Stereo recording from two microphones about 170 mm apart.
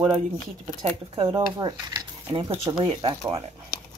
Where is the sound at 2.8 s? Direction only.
30° right (ahead or behind).